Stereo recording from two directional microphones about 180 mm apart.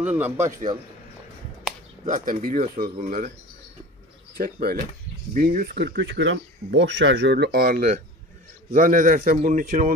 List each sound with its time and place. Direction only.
0.0 s a man's voice: 10° right (ahead or behind)
2.0 s speech: 45° right (ahead or behind)
4.4 s speech: 50° right (ahead or behind)